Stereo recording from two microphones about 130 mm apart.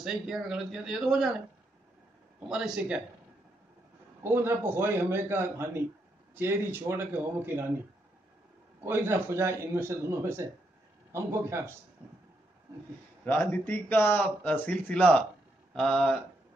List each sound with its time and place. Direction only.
0.0 s speech: 5° right (ahead or behind)
2.4 s speech: 5° right (ahead or behind)
4.2 s a man's voice: 20° right (ahead or behind)
8.8 s a man's voice: 20° right (ahead or behind)
13.2 s a man's voice: 15° left (ahead or behind)